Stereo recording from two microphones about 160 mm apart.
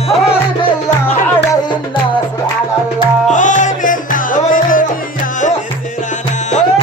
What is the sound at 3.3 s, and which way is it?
Music, 50° left (ahead or behind).